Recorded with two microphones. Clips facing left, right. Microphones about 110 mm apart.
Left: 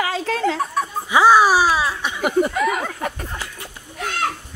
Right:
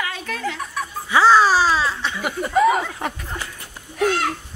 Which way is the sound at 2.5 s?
35° right (ahead or behind).